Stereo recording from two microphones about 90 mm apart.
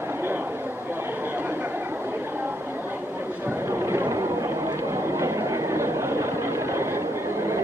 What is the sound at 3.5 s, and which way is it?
Vehicle, 30° right (ahead or behind).